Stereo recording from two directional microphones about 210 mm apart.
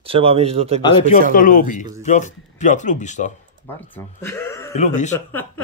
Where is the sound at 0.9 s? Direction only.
30° left (ahead or behind).